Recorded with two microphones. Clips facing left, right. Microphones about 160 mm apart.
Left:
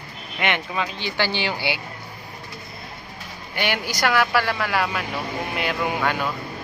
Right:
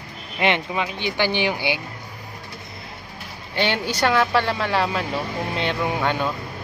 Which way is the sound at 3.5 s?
25° right (ahead or behind).